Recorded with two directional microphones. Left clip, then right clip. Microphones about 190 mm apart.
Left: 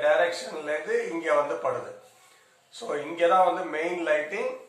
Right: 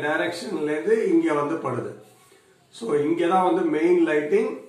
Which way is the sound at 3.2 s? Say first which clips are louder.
Left 3 dB; 30° left (ahead or behind).